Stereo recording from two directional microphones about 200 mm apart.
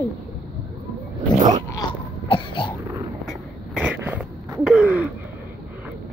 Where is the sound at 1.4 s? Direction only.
35° right (ahead or behind).